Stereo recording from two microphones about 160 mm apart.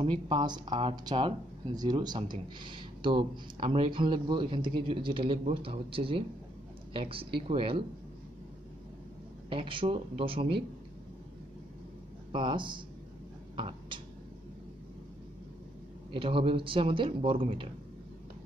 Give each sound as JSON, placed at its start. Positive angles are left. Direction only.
{"t": 0.0, "sound": "speech", "side_deg": -30}
{"t": 9.5, "sound": "speech", "side_deg": -30}
{"t": 12.3, "sound": "speech", "side_deg": -30}
{"t": 13.6, "sound": "a sound", "side_deg": -30}
{"t": 16.1, "sound": "speech", "side_deg": -35}